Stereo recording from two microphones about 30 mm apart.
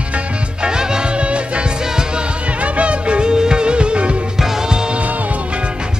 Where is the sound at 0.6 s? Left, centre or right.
Right.